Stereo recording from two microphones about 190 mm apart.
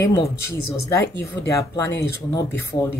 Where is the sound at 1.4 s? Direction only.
15° left (ahead or behind).